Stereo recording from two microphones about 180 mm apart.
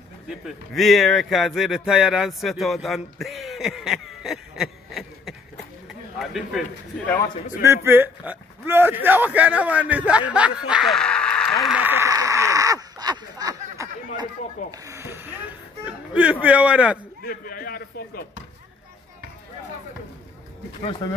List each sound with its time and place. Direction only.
0.3 s a man's voice: centre (ahead or behind)
7.6 s a sound: 15° right (ahead or behind)
14.7 s speech: 15° right (ahead or behind)
17.2 s a man's voice: 55° left (ahead or behind)
21.0 s speech: 20° left (ahead or behind)